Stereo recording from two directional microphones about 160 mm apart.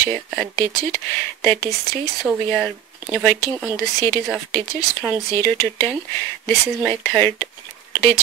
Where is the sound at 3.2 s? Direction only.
15° left (ahead or behind).